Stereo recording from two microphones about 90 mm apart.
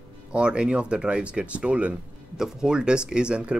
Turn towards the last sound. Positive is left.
turn(degrees=-10)  # may be behind; listen again after turning